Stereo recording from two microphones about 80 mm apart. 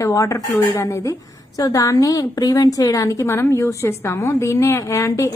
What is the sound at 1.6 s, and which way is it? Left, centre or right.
A woman's voice, left.